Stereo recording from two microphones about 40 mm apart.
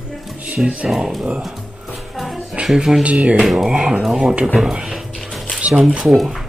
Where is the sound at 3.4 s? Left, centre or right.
Centre.